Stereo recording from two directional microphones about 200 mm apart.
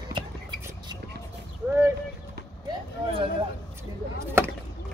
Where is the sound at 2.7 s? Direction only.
25° right (ahead or behind).